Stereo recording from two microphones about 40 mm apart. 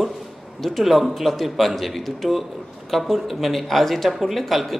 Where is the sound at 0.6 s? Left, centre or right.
Centre.